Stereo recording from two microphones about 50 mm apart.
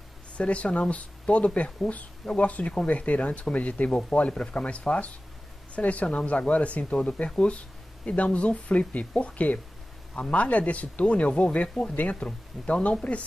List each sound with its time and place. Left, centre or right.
0.4 s speech: left